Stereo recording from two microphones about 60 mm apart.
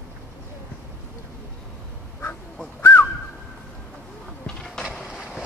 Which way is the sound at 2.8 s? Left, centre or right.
Left.